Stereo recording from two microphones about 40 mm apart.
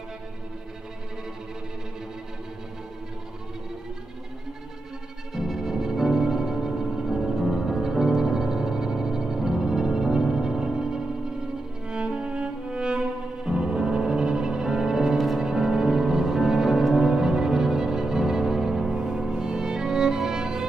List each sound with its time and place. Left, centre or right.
5.3 s music: centre
11.9 s music: right